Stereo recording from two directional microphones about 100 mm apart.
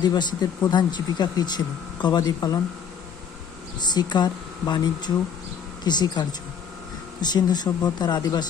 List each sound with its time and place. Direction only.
0.0 s speech: 45° left (ahead or behind)
3.8 s speech: 45° left (ahead or behind)